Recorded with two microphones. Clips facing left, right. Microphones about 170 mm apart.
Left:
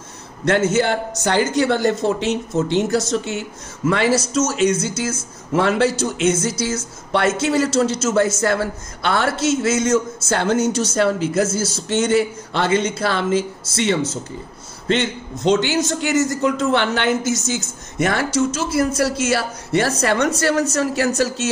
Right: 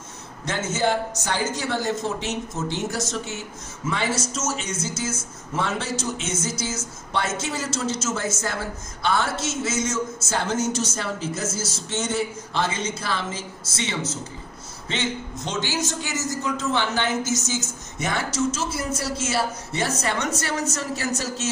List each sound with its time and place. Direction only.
0.5 s a man's voice: 65° left (ahead or behind)